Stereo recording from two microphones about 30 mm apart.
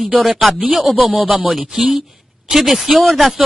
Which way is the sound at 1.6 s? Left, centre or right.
Right.